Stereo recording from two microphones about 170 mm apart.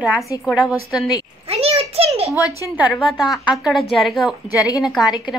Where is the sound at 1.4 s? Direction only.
35° right (ahead or behind).